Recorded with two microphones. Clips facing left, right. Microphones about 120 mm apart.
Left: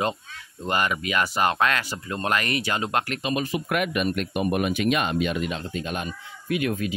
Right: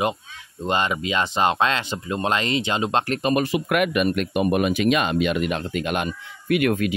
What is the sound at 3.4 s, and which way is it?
Speech, 75° right (ahead or behind).